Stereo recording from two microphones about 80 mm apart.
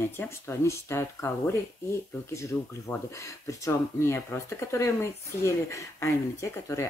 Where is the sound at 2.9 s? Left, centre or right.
Left.